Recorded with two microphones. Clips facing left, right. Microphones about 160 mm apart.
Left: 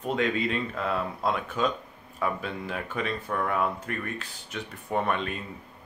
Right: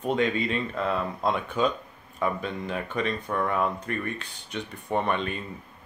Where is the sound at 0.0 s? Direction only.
Centre (ahead or behind).